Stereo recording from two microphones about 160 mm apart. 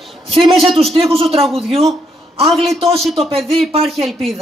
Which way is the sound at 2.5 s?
Centre (ahead or behind).